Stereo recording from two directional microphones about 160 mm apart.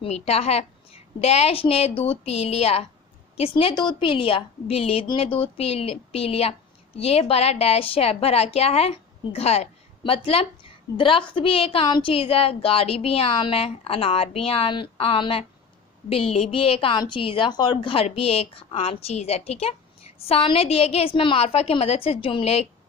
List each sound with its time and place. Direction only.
0.0 s a woman's voice: 40° left (ahead or behind)